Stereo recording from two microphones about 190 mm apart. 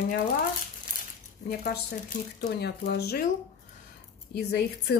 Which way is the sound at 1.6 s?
50° left (ahead or behind).